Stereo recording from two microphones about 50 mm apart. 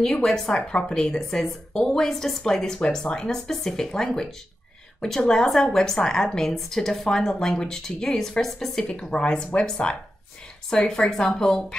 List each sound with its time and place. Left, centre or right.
0.0 s a woman's voice: centre
1.8 s a woman's voice: centre
8.8 s a woman's voice: centre